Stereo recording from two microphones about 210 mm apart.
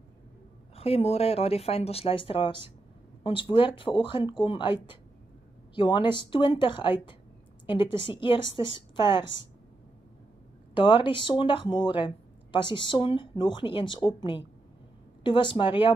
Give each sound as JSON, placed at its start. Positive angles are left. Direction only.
{"t": 0.7, "sound": "speech", "side_deg": 30}
{"t": 5.8, "sound": "speech", "side_deg": 20}
{"t": 10.7, "sound": "speech", "side_deg": 25}